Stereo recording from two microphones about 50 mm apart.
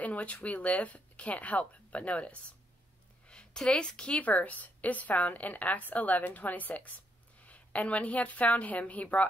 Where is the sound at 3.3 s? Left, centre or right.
Centre.